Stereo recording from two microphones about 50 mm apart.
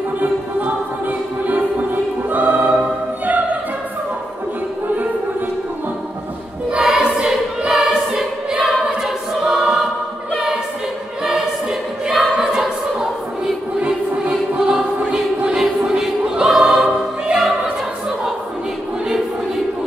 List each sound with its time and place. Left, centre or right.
0.2 s music: right
6.9 s choir: centre
12.2 s choir: centre
13.7 s music: right
14.3 s choir: centre